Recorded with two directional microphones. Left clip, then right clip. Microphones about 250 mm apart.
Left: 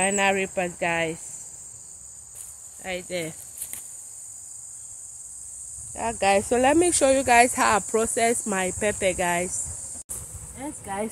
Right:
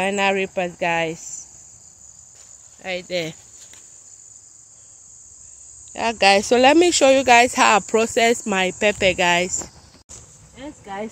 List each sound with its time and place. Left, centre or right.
0.0 s speech: right
2.8 s speech: right
5.9 s speech: right
10.6 s speech: centre